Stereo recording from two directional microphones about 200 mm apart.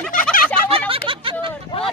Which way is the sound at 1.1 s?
25° right (ahead or behind).